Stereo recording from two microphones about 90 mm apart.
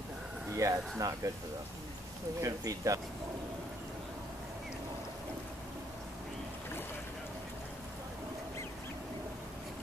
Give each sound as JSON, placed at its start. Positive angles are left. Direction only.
{"t": 0.6, "sound": "speech", "side_deg": -35}
{"t": 2.4, "sound": "speech", "side_deg": -40}